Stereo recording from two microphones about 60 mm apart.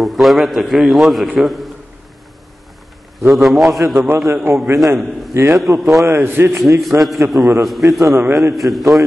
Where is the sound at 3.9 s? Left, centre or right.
Right.